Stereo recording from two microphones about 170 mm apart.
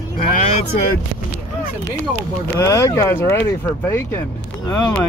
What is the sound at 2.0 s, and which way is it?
Speech, 15° left (ahead or behind).